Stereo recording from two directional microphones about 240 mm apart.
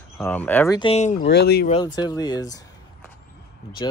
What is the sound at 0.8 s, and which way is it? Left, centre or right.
Speech, left.